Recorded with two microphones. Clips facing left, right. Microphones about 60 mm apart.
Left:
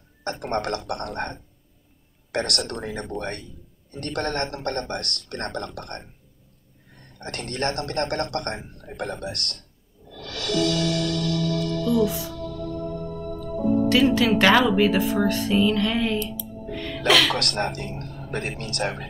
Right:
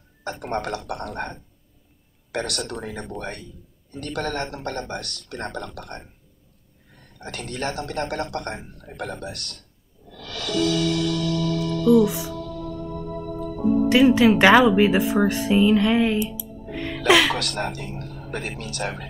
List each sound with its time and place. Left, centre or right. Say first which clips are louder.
0.2 s a man's voice: left 1 dB; centre
10.1 s music: even; left
12.0 s music: right 2 dB; right
13.8 s speech: right 5 dB; centre
17.4 s a man's voice: left 1 dB; centre